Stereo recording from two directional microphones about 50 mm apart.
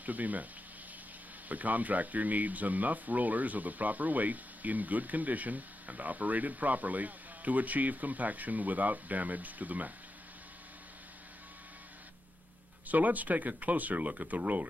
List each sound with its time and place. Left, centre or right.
0.0 s speech: right
1.5 s speech: right
12.8 s speech: right